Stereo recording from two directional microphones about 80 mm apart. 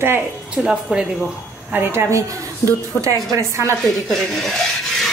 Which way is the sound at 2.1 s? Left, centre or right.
Right.